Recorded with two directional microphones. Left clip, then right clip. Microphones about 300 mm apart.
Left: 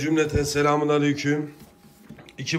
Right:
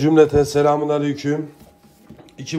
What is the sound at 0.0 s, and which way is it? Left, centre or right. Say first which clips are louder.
A man's voice: right 9 dB; centre.